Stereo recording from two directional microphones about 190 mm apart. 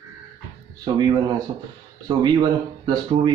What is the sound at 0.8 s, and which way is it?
Speech, 20° right (ahead or behind).